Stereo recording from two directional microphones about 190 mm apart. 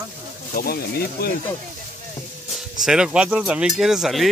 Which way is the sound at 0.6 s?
55° left (ahead or behind).